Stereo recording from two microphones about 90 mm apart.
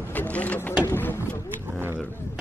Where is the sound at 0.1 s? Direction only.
20° left (ahead or behind).